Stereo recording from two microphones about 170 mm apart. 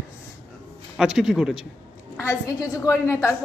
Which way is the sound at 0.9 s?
5° right (ahead or behind).